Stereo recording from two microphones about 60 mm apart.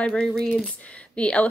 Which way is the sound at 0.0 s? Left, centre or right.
Centre.